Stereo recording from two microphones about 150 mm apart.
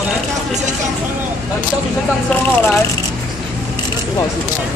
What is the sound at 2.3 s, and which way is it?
Speech, 10° left (ahead or behind).